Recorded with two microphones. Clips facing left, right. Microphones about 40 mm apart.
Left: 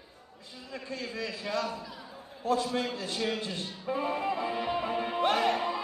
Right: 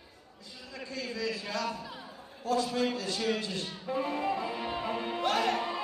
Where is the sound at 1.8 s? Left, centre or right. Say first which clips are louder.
Right 1 dB; centre.